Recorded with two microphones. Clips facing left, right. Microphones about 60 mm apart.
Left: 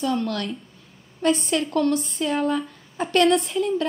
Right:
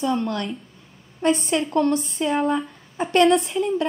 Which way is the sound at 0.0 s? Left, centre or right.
Centre.